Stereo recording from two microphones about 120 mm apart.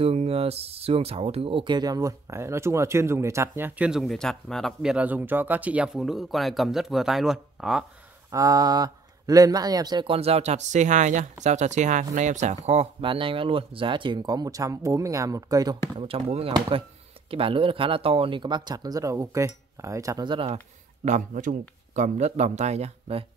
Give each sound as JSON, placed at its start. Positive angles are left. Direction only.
{"t": 0.0, "sound": "speech", "side_deg": -55}
{"t": 4.0, "sound": "speech", "side_deg": 5}
{"t": 4.9, "sound": "speech", "side_deg": -15}
{"t": 8.3, "sound": "speech", "side_deg": -30}
{"t": 10.0, "sound": "speech", "side_deg": -55}
{"t": 11.4, "sound": "speech", "side_deg": -75}
{"t": 13.0, "sound": "speech", "side_deg": -45}
{"t": 16.1, "sound": "speech", "side_deg": -50}
{"t": 20.2, "sound": "speech", "side_deg": -45}
{"t": 21.0, "sound": "speech", "side_deg": -85}